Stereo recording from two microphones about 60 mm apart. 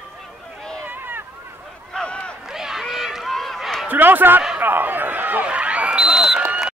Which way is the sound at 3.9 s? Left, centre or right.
Right.